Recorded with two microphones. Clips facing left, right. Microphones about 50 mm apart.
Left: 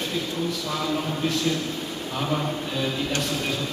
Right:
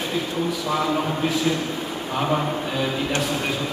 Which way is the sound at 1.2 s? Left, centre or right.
Centre.